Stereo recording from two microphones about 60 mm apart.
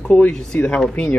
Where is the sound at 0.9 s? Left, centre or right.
Left.